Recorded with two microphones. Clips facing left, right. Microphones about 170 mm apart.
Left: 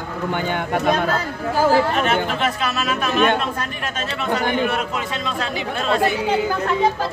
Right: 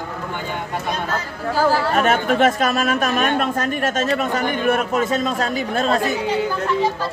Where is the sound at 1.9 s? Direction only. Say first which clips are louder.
Right 3 dB; 45° right (ahead or behind).